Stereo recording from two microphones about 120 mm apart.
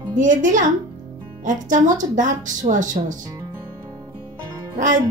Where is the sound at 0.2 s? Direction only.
90° right.